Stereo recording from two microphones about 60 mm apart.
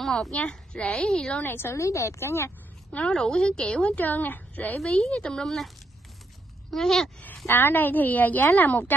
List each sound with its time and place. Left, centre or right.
0.0 s a woman's voice: centre
0.4 s a woman's voice: centre
1.4 s a woman's voice: left
1.8 s speech: left
2.9 s a woman's voice: left
3.2 s a woman's voice: centre; by 4.7 s left
5.0 s speech: centre
6.7 s speech: centre
7.4 s a woman's voice: left